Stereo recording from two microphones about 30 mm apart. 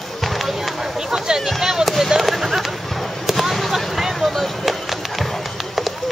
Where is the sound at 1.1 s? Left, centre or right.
Right.